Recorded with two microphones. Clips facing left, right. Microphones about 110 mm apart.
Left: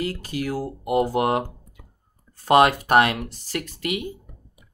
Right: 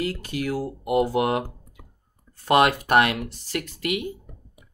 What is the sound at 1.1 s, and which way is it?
Speech, 30° left (ahead or behind).